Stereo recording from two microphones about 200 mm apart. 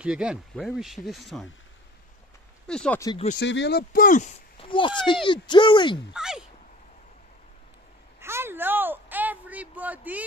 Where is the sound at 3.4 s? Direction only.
60° left (ahead or behind); by 4.3 s 40° left (ahead or behind).